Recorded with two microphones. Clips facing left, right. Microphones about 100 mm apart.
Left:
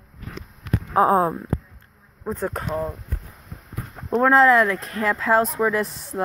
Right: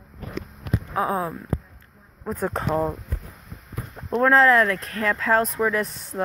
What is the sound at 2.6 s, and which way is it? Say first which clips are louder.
Speech: right 3 dB; 30° right (ahead or behind).